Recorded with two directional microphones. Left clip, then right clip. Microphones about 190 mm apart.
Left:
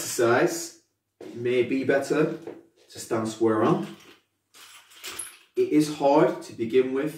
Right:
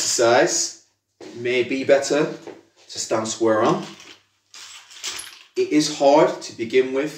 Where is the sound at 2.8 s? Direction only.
15° left (ahead or behind).